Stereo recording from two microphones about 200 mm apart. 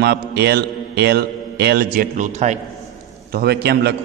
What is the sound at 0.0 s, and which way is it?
A man's voice, 55° right (ahead or behind).